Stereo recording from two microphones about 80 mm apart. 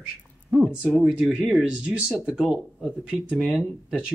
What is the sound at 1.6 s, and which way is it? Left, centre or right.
Speech, centre.